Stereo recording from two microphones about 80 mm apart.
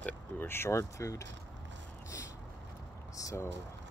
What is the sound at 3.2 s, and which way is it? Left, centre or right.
Speech, left.